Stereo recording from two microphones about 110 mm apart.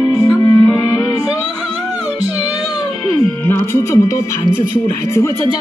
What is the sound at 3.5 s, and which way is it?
Music, 25° left (ahead or behind).